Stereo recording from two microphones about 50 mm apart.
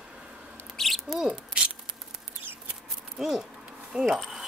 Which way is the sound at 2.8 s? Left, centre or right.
Centre.